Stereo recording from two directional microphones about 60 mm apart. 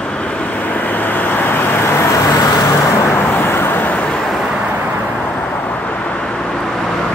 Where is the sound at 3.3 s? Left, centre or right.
Left.